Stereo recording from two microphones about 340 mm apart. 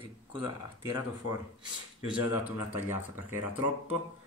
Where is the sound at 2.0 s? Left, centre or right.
Centre.